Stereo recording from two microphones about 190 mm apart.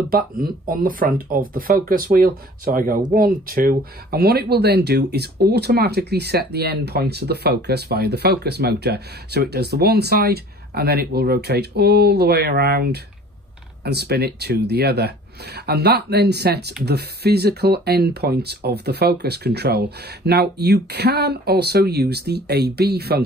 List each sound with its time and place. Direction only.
0.1 s speech: 50° right (ahead or behind)